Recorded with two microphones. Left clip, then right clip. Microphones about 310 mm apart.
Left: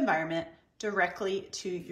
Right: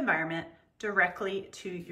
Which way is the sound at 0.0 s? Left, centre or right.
Centre.